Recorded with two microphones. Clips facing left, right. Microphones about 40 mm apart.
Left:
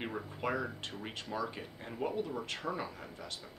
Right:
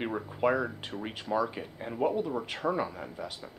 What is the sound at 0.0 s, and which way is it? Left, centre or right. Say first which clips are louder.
Speech: right 8 dB; centre.